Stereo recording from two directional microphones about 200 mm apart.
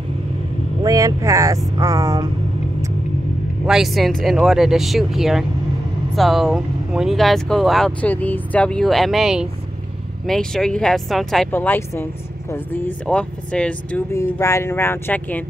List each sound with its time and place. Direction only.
0.8 s speech: 15° right (ahead or behind)
3.6 s speech: centre (ahead or behind)